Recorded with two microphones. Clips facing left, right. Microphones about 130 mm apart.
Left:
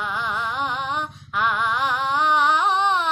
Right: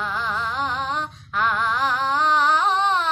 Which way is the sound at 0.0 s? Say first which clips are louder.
Even; 15° left (ahead or behind).